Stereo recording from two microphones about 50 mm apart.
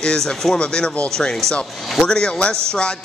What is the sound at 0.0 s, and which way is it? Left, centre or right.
Speech, centre.